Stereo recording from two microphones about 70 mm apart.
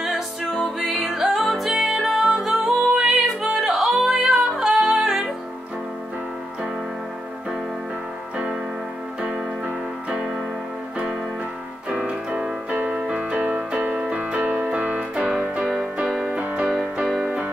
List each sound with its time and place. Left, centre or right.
0.6 s music: centre
11.9 s piano: centre
16.1 s music: centre